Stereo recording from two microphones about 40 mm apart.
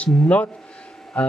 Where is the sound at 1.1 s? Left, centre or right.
Left.